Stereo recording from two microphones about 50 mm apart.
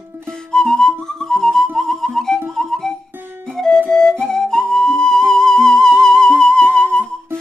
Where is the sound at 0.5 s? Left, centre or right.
Centre.